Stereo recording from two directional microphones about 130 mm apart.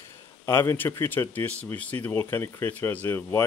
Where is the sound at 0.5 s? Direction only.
20° left (ahead or behind).